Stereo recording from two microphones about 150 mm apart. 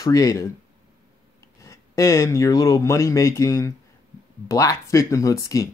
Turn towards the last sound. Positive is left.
turn(degrees=20)  # may be behind; listen again after turning